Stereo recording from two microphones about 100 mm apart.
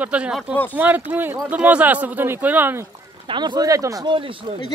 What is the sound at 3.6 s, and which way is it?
Speech, 35° right (ahead or behind).